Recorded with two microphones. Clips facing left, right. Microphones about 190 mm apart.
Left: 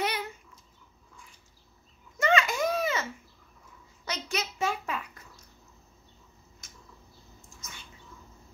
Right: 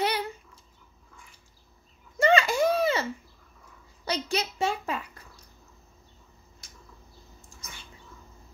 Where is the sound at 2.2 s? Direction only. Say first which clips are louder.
Right 4 dB; 30° right (ahead or behind).